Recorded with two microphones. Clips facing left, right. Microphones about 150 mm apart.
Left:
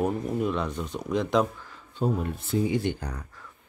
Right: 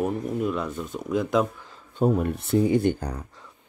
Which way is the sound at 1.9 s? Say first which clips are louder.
Right 5 dB; 55° right (ahead or behind).